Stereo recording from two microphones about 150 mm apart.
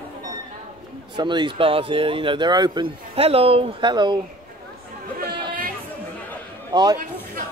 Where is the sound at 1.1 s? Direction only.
30° right (ahead or behind).